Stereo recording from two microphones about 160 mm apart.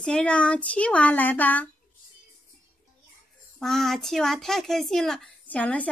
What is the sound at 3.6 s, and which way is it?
Speech, centre (ahead or behind).